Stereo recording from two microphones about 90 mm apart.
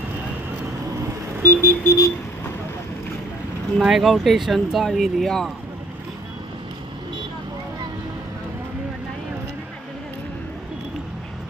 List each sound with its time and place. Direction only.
1.4 s vehicle: 25° left (ahead or behind)
3.7 s speech: 5° right (ahead or behind)